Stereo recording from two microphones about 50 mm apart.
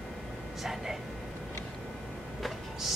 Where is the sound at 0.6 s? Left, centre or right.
Centre.